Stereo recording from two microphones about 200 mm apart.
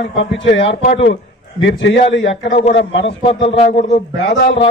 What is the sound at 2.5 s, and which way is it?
Speech, 35° left (ahead or behind).